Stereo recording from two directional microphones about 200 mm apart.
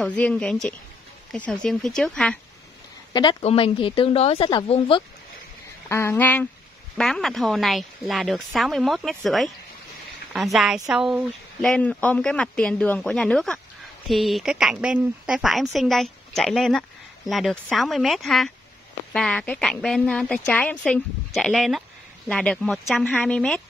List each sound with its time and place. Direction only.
0.0 s speech: 5° left (ahead or behind)
3.1 s speech: 20° left (ahead or behind)
5.9 s speech: 15° left (ahead or behind)